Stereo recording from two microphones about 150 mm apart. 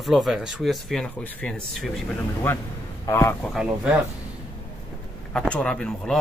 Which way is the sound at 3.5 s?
5° right (ahead or behind).